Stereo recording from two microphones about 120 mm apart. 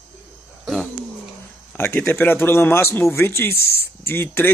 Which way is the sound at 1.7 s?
20° left (ahead or behind).